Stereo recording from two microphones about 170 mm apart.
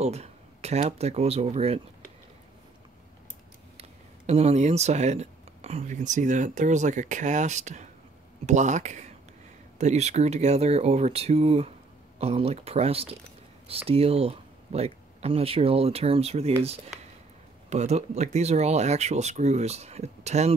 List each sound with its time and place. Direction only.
0.0 s speech: 40° right (ahead or behind)
4.3 s speech: 40° right (ahead or behind)